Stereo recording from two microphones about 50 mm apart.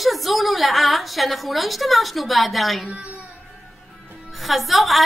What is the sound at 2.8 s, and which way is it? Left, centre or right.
Speech, right.